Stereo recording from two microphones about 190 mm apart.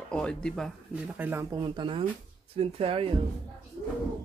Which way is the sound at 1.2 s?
10° right (ahead or behind).